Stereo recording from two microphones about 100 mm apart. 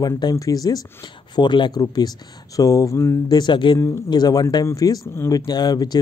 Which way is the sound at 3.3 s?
50° left (ahead or behind).